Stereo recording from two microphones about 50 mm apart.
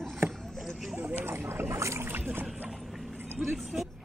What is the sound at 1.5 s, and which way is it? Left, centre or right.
Boat, right.